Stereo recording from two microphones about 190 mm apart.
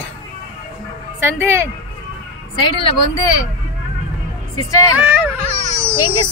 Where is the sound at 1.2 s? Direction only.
15° right (ahead or behind).